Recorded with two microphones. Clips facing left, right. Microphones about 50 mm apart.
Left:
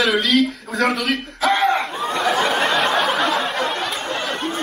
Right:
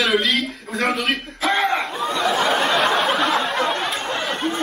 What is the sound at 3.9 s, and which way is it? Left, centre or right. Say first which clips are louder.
Chatter: even; centre.